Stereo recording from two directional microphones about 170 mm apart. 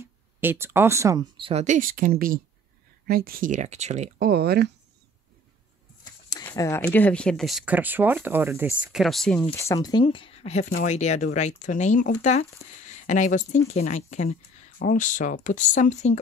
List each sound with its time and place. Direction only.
0.0 s speech: 15° right (ahead or behind)
1.4 s speech: 40° right (ahead or behind)
4.2 s speech: 65° right (ahead or behind)
6.3 s a sound: 20° left (ahead or behind)
6.9 s speech: 10° left (ahead or behind)
9.4 s speech: 15° left (ahead or behind)
10.0 s speech: 35° left (ahead or behind)